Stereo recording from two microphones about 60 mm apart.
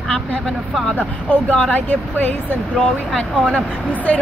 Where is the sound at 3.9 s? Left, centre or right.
Left.